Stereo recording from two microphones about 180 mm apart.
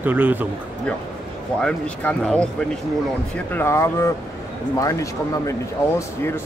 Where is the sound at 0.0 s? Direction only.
10° right (ahead or behind).